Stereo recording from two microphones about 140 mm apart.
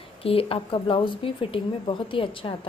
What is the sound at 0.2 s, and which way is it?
A woman's voice, 40° left (ahead or behind).